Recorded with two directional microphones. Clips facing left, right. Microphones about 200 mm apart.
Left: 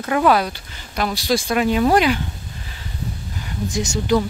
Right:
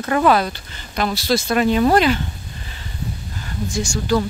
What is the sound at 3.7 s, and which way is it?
Speech, 20° left (ahead or behind).